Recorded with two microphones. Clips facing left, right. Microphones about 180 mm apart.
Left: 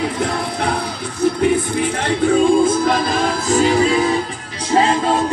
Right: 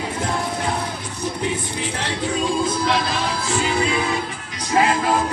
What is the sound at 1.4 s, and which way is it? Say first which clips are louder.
Music: left 9 dB; 55° left (ahead or behind).